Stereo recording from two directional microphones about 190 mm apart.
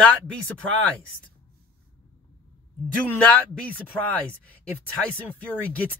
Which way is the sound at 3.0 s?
5° left (ahead or behind).